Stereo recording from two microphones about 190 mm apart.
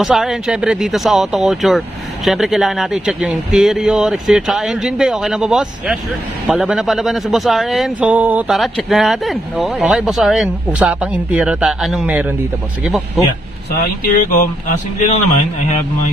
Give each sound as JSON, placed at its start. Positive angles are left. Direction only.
{"t": 0.0, "sound": "a man's voice", "side_deg": 0}
{"t": 14.1, "sound": "speech", "side_deg": 45}